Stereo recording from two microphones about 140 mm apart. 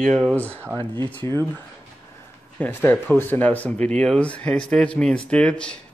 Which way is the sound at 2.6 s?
15° left (ahead or behind).